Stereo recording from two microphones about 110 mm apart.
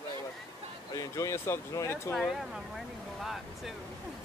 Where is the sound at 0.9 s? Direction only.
30° left (ahead or behind).